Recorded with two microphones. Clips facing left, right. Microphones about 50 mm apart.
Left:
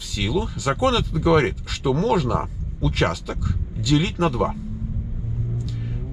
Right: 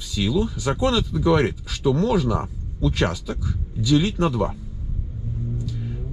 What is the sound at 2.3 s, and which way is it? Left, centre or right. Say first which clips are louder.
Speech: left 1 dB; left.